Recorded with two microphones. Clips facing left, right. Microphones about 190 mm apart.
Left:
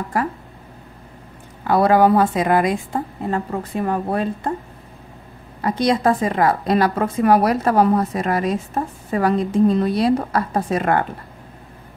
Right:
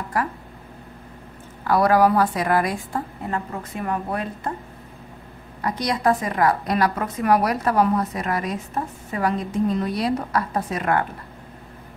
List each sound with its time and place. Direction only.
1.7 s a woman's voice: 25° left (ahead or behind)
5.6 s a woman's voice: 25° left (ahead or behind)